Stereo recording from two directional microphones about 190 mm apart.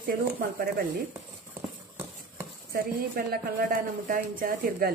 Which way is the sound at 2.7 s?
50° right (ahead or behind).